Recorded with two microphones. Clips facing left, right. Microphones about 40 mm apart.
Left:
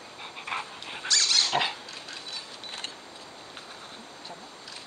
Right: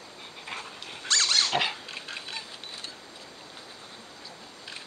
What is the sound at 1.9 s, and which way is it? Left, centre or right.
Dog, right.